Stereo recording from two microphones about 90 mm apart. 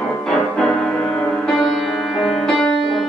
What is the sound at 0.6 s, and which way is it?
Music, 10° left (ahead or behind).